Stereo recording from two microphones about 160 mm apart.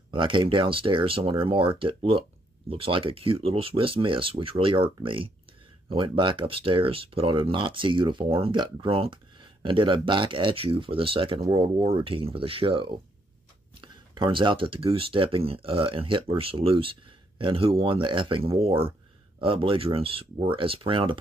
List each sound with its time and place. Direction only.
0.1 s speech: 30° right (ahead or behind)